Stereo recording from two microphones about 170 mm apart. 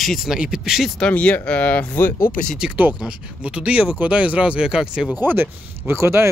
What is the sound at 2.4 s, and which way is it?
Speech, 5° right (ahead or behind).